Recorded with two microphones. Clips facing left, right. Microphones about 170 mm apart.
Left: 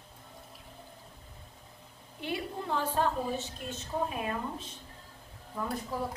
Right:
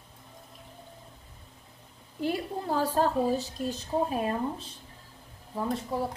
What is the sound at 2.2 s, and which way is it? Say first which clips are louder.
A woman's voice: right 5 dB; 40° right (ahead or behind).